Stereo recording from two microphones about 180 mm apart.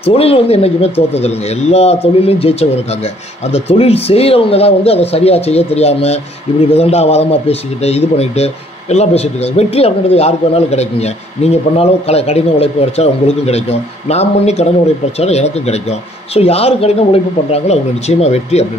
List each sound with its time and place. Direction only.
0.0 s a man's voice: 35° left (ahead or behind)